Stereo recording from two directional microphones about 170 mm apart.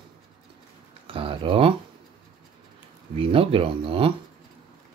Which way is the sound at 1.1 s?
30° right (ahead or behind).